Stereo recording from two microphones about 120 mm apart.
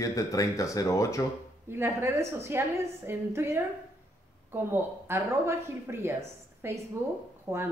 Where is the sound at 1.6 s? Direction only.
20° right (ahead or behind).